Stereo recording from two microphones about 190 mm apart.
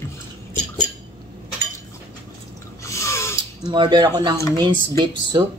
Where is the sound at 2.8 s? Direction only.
15° left (ahead or behind).